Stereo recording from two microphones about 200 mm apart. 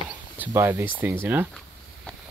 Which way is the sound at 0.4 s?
10° right (ahead or behind).